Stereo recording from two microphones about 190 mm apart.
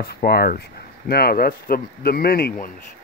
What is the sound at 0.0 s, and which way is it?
Speech, 55° left (ahead or behind).